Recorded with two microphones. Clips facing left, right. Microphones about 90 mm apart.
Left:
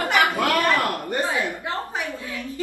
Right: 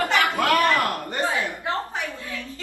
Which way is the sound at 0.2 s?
20° left (ahead or behind).